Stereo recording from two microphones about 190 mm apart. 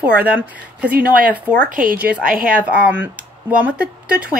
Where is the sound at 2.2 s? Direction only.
50° right (ahead or behind).